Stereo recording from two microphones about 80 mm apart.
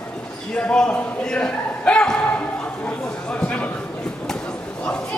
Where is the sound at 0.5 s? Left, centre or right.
Centre.